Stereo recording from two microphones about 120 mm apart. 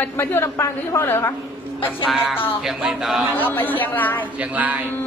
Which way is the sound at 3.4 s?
15° left (ahead or behind).